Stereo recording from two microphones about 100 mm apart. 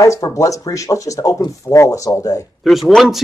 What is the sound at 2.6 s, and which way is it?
Speech, centre (ahead or behind).